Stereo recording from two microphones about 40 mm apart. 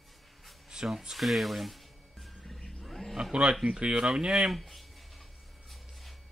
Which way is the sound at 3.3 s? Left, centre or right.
Right.